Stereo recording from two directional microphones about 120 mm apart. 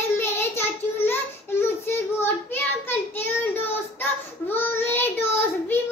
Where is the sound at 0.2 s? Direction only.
20° left (ahead or behind).